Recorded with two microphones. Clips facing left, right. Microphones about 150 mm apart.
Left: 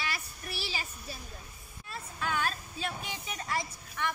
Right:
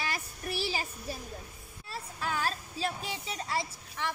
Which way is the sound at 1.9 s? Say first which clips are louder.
Even; 35° right (ahead or behind).